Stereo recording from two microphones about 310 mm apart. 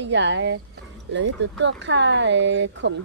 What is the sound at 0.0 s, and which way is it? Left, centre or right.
Speech, right.